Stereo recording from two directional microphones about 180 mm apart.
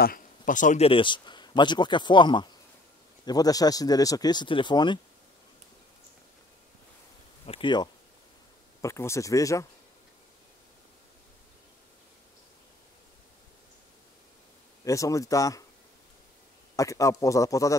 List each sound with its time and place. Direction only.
0.0 s speech: 50° left (ahead or behind); by 5.0 s 25° left (ahead or behind)
7.4 s a man's voice: 30° left (ahead or behind)
14.9 s speech: 20° left (ahead or behind)
16.7 s a man's voice: 15° left (ahead or behind)